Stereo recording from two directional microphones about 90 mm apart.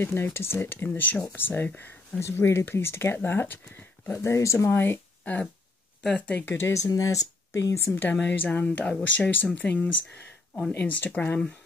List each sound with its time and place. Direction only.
0.0 s speech: 25° left (ahead or behind)
6.5 s speech: 30° left (ahead or behind)
7.7 s speech: 30° left (ahead or behind)
8.2 s speech: 15° left (ahead or behind)